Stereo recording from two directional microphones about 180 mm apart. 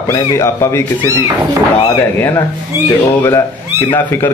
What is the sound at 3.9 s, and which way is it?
Speech, 10° left (ahead or behind).